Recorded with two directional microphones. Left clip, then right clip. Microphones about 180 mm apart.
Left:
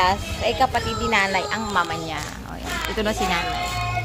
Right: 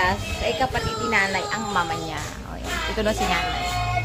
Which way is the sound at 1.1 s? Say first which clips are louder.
Left 2 dB; 25° left (ahead or behind).